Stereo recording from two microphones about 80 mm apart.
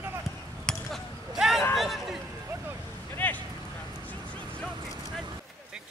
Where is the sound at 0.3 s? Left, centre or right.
Centre.